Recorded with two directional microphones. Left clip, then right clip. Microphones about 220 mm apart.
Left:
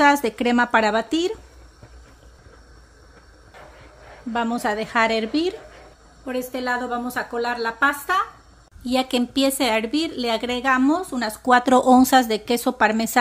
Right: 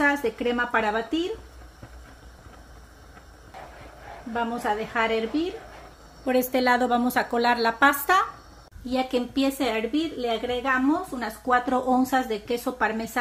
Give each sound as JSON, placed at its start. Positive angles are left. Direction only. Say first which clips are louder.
{"t": 0.0, "sound": "a woman's voice", "louder": "left 6 dB", "side_deg": 55}
{"t": 4.3, "sound": "a woman's voice", "louder": "left 3 dB", "side_deg": 50}
{"t": 6.2, "sound": "a woman's voice", "louder": "right 4 dB", "side_deg": -15}
{"t": 8.8, "sound": "a woman's voice", "louder": "left 4 dB", "side_deg": 35}